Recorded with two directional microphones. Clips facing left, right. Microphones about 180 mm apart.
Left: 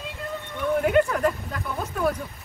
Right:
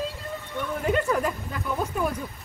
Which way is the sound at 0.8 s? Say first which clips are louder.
Left 2 dB; 5° left (ahead or behind).